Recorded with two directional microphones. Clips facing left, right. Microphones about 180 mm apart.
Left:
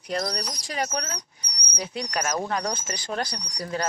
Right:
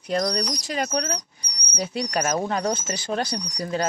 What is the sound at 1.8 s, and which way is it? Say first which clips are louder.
Speech: right 4 dB; 35° right (ahead or behind).